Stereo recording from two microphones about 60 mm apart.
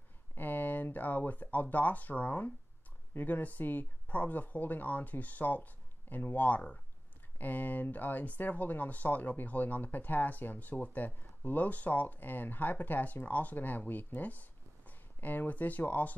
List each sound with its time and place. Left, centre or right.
0.3 s speech: left